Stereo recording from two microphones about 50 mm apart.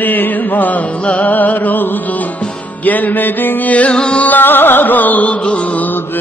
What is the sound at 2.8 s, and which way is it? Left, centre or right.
Mantra, left.